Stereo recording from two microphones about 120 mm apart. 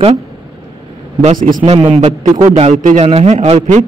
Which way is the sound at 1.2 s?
65° right (ahead or behind).